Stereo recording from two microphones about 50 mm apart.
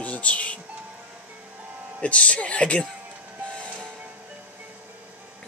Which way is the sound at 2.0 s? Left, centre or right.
Left.